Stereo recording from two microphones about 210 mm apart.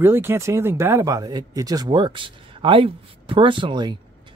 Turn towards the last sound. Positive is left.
turn(degrees=-20)  # may be behind; listen again after turning